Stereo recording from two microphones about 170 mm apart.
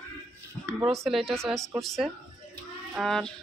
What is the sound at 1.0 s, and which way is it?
Speech, centre (ahead or behind).